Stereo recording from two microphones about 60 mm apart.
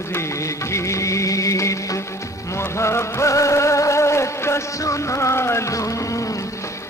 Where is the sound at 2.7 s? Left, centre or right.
Left.